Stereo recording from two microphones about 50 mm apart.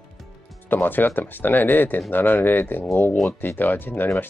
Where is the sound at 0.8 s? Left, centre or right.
Left.